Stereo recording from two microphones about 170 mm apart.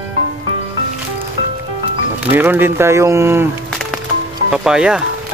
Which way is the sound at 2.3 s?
10° right (ahead or behind).